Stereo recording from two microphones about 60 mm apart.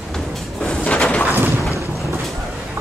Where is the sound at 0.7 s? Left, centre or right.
Centre.